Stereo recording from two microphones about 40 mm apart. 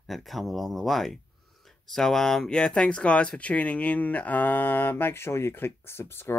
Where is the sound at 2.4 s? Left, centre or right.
Left.